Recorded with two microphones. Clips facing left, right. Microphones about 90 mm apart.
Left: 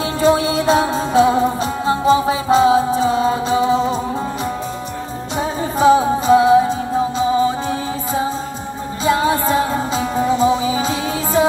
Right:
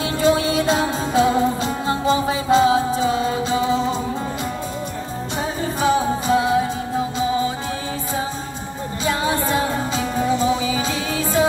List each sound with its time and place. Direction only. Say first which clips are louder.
0.2 s music: left 3 dB; 25° left (ahead or behind)
5.8 s music: left 7 dB; 30° left (ahead or behind)
9.0 s music: left 5 dB; 25° left (ahead or behind)